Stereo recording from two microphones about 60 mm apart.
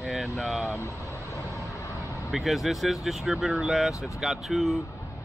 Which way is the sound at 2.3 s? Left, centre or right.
Centre.